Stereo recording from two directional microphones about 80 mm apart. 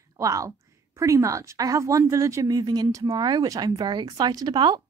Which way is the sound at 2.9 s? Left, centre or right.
Right.